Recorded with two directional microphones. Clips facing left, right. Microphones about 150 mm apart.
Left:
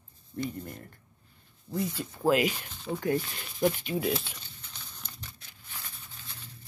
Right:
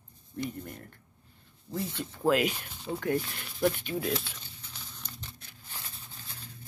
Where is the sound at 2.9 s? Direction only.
20° right (ahead or behind).